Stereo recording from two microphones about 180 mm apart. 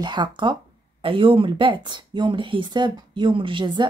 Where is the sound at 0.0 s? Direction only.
25° right (ahead or behind).